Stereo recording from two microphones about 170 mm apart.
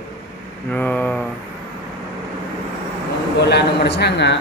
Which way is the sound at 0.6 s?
10° left (ahead or behind).